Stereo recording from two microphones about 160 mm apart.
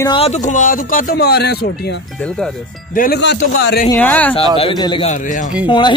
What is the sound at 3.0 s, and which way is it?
Speech, 80° left.